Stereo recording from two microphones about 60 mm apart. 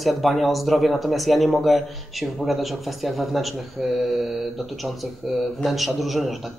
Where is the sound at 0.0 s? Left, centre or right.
Centre.